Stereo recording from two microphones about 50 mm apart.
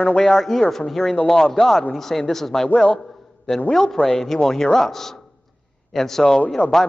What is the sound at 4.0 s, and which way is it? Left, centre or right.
Speech, centre.